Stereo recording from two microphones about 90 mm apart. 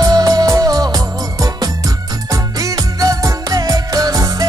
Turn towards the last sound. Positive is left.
turn(degrees=-40)  # may be behind; listen again after turning